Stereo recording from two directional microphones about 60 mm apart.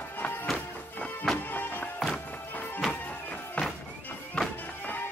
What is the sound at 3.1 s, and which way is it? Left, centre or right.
Music, left.